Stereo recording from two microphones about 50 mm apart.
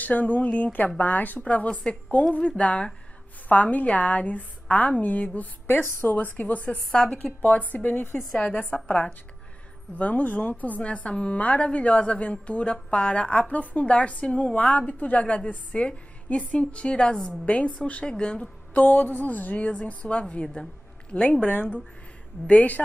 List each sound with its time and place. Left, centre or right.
0.0 s a woman's voice: left
8.5 s a woman's voice: left
16.5 s a woman's voice: centre
18.9 s a woman's voice: left